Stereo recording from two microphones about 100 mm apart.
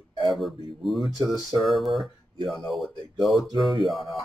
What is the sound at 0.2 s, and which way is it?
Speech, centre (ahead or behind).